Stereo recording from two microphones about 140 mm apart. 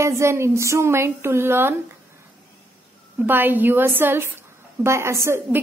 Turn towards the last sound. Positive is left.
turn(degrees=-20)  # may be behind; listen again after turning